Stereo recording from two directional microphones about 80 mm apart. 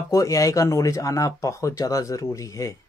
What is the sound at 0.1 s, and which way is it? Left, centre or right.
Speech, left.